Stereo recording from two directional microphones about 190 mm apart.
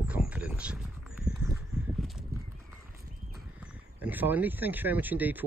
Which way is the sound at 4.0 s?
10° right (ahead or behind).